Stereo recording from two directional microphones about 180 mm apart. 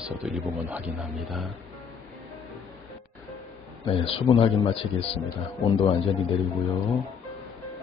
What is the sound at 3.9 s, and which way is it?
Speech, 30° left (ahead or behind).